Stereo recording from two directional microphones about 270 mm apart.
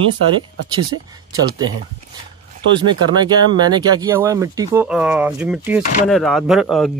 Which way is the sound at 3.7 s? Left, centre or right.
Centre.